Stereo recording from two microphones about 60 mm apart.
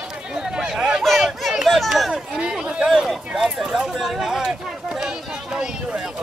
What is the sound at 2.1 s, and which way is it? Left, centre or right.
Speech, centre.